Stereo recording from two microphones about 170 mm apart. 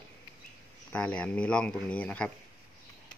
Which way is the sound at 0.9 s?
5° left (ahead or behind).